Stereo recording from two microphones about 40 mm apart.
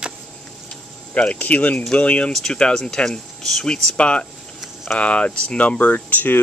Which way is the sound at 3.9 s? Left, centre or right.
Left.